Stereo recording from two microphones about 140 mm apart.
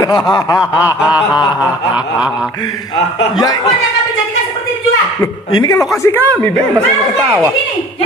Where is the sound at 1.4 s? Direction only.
30° left (ahead or behind).